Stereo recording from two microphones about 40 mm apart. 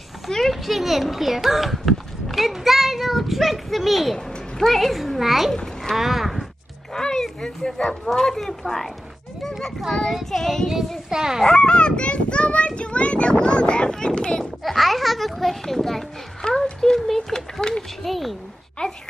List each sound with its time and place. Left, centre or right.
0.3 s a child's voice: centre
6.9 s a child's voice: centre
11.1 s speech: centre
11.4 s speech: left
14.4 s a child's voice: centre
16.4 s speech: left
16.8 s a child's voice: centre
18.0 s a child's voice: centre